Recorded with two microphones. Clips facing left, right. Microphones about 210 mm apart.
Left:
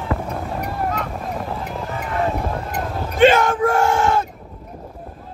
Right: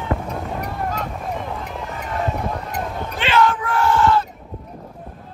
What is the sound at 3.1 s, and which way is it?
Yell, 45° left (ahead or behind).